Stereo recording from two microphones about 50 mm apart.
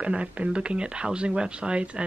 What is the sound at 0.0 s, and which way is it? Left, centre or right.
Speech, right.